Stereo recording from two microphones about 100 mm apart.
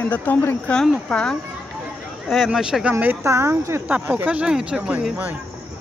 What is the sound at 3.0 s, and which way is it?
Speech, 25° right (ahead or behind).